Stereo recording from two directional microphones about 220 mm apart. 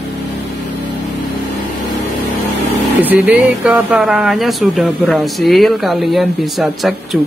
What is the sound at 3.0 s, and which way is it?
Speech, 5° right (ahead or behind).